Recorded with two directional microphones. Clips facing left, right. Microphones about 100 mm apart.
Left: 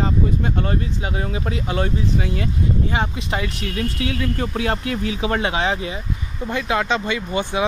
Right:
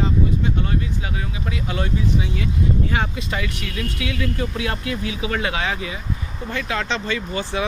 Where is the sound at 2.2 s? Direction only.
45° left (ahead or behind).